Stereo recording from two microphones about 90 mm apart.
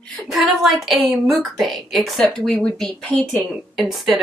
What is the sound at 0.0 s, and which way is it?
A woman's voice, centre (ahead or behind).